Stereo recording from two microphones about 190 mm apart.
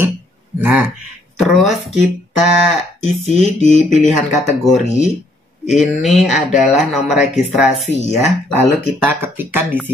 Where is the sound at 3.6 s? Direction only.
40° left (ahead or behind).